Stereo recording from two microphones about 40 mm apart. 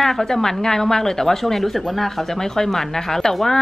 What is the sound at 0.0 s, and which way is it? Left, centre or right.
Speech, centre.